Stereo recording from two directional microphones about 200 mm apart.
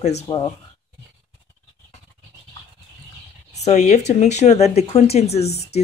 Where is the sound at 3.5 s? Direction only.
35° left (ahead or behind).